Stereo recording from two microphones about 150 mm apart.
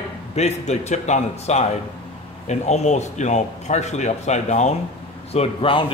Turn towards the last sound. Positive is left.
turn(degrees=35)  # may be behind; listen again after turning